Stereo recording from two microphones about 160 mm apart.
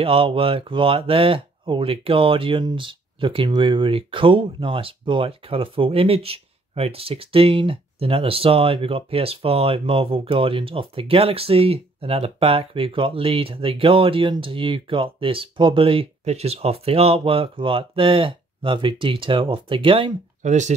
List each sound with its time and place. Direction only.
0.0 s speech: 35° right (ahead or behind)
20.4 s speech: 50° right (ahead or behind)